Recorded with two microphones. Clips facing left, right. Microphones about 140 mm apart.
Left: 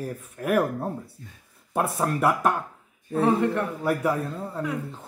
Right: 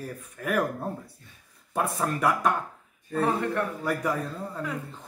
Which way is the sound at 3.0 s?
20° left (ahead or behind).